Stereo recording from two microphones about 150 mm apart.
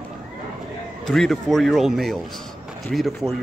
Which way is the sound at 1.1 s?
Centre (ahead or behind).